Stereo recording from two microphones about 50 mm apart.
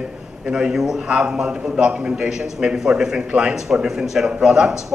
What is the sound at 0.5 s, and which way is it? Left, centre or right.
A man's voice, centre.